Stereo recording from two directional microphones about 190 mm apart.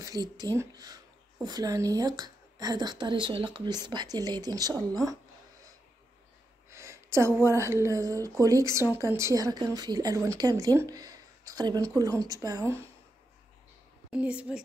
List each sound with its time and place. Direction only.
0.0 s speech: 20° right (ahead or behind)
6.7 s a woman's voice: 15° right (ahead or behind)
14.1 s a woman's voice: 5° right (ahead or behind)